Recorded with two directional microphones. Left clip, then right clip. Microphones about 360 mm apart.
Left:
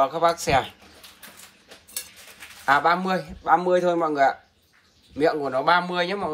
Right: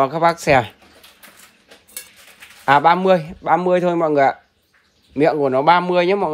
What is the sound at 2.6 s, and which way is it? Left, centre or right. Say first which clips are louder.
A man's voice: right 6 dB; centre.